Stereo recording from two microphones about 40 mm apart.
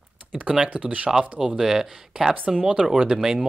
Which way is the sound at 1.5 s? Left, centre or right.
Centre.